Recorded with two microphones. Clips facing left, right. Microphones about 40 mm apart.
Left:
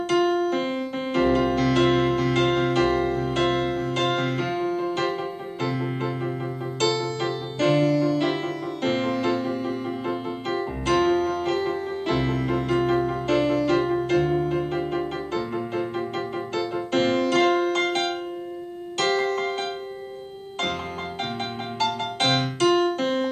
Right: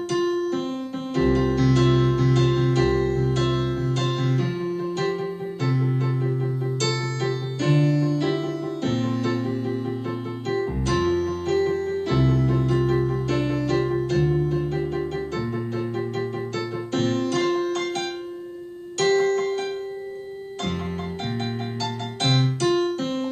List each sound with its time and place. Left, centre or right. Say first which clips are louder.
0.1 s music: left 2 dB; left
5.6 s keyboard: even; left
6.8 s music: left 5 dB; left
10.9 s piano: left 3 dB; left
14.9 s music: even; left
21.8 s keyboard: left 4 dB; left